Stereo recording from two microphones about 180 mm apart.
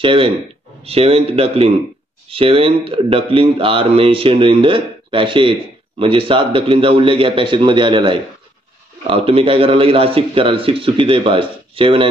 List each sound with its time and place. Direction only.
0.0 s a man's voice: 30° right (ahead or behind)